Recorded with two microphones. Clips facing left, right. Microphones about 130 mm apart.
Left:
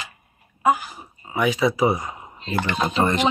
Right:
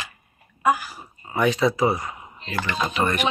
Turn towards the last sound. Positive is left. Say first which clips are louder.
# left 3 dB
turn(degrees=20)  # may be behind; listen again after turning